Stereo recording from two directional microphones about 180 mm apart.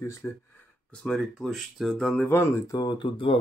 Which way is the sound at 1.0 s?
5° left (ahead or behind).